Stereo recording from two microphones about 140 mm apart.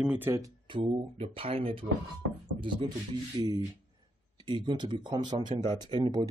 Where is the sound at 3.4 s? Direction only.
30° right (ahead or behind).